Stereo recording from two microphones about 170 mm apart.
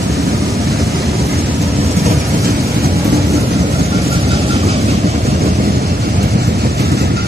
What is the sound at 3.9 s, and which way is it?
Vehicle, 35° right (ahead or behind).